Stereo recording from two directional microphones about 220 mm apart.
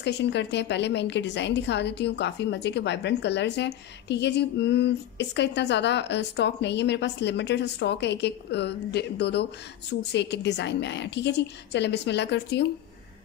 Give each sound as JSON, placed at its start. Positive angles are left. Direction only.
{"t": 0.0, "sound": "a woman's voice", "side_deg": 50}